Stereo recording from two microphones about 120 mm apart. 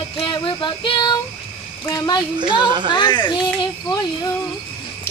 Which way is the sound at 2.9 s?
40° left (ahead or behind).